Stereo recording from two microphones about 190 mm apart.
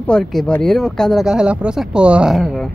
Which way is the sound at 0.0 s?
5° left (ahead or behind).